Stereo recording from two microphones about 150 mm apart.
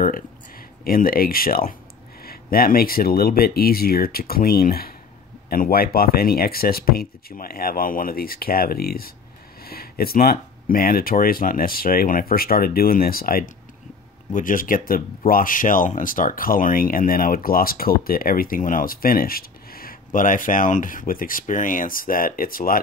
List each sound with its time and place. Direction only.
0.0 s speech: 70° left (ahead or behind)
14.3 s speech: 65° left (ahead or behind)